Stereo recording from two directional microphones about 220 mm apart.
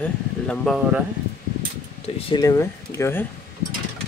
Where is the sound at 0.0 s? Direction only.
5° left (ahead or behind).